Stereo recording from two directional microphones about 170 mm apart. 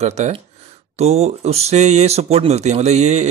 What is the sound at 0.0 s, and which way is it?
Speech, 40° right (ahead or behind).